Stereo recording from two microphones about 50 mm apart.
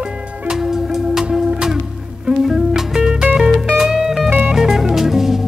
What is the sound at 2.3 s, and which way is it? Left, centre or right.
Music, centre.